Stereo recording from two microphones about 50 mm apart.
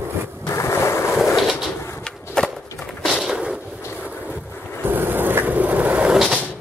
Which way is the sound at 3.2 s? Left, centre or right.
Centre.